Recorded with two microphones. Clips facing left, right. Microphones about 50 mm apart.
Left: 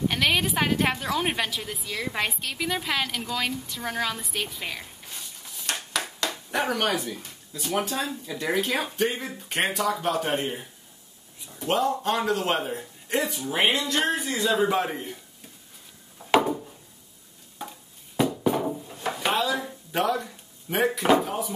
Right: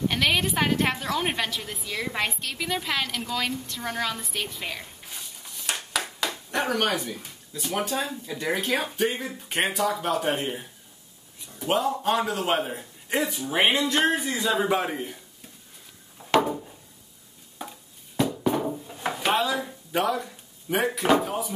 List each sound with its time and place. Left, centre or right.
0.1 s a woman's voice: centre
13.8 s speech: right
14.1 s speech: centre
16.2 s a sound: centre
17.6 s a sound: centre
18.9 s drawer open or close: centre
20.7 s speech: centre